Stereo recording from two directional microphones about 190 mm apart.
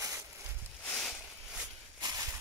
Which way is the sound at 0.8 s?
5° left (ahead or behind).